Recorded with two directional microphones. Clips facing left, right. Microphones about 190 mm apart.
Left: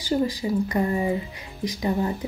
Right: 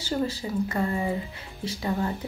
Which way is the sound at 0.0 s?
15° left (ahead or behind).